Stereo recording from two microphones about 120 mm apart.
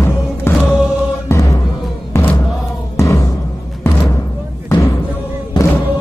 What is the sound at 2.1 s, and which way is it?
Music, 15° left (ahead or behind).